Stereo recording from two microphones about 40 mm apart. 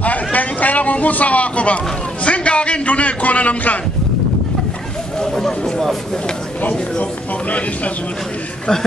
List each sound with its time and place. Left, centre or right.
0.0 s a sound: left
2.2 s a man's voice: left
5.2 s speech: centre